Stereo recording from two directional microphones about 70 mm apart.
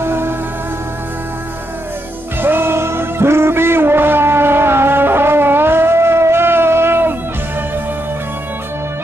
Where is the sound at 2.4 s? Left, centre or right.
Right.